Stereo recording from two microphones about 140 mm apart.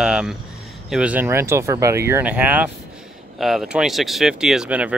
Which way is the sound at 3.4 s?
Centre (ahead or behind).